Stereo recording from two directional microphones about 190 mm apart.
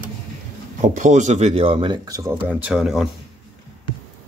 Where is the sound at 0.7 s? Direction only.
40° right (ahead or behind); by 3.1 s centre (ahead or behind).